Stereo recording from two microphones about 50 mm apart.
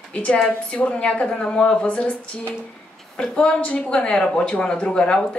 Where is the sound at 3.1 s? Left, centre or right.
Centre.